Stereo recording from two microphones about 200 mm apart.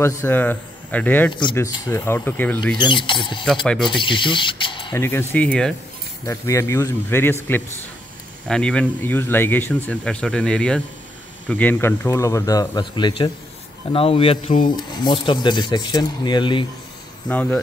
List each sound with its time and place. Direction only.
0.0 s speech: 10° left (ahead or behind)
2.8 s speech: 25° left (ahead or behind)
4.9 s speech: 10° left (ahead or behind)
6.2 s speech: 15° left (ahead or behind)
8.5 s speech: 5° left (ahead or behind); by 16.6 s 25° left (ahead or behind)
17.3 s speech: 10° left (ahead or behind)